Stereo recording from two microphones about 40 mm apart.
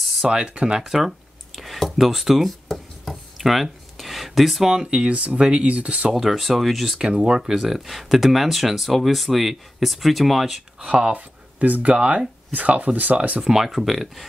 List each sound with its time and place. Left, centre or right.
0.2 s speech: centre
0.8 s a sound: centre
4.6 s speech: centre
5.0 s speech: right
6.1 s speech: centre
7.0 s speech: right
7.6 s speech: centre
10.8 s speech: right
13.4 s speech: centre